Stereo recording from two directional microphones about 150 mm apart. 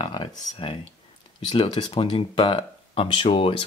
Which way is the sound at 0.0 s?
30° left (ahead or behind).